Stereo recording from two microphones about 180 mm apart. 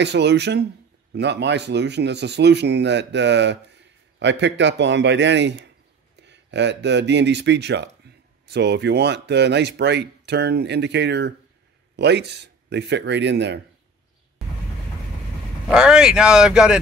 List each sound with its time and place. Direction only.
0.0 s a man's voice: 70° right (ahead or behind)
15.7 s speech: 5° right (ahead or behind)